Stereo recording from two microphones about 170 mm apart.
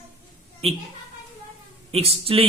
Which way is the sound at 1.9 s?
35° right (ahead or behind).